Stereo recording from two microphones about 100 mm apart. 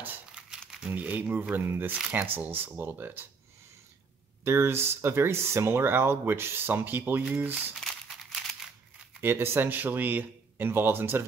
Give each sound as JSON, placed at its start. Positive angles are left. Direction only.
{"t": 0.0, "sound": "crumpling", "side_deg": -20}
{"t": 0.7, "sound": "crumpling", "side_deg": -5}
{"t": 0.9, "sound": "speech", "side_deg": -15}
{"t": 2.0, "sound": "speech", "side_deg": -10}
{"t": 2.2, "sound": "speech", "side_deg": -20}
{"t": 4.5, "sound": "speech", "side_deg": -25}
{"t": 7.8, "sound": "crumpling", "side_deg": 5}
{"t": 9.2, "sound": "speech", "side_deg": -25}